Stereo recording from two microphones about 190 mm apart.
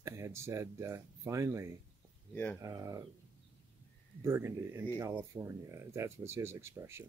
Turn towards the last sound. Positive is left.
turn(degrees=-15)  # may be behind; listen again after turning